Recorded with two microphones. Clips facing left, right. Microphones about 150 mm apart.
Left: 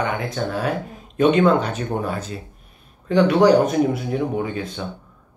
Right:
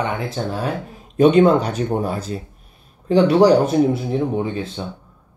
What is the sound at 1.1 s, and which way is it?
Speech, 35° right (ahead or behind).